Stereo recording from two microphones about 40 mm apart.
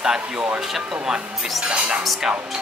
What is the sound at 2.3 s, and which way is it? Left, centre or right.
Speech, centre.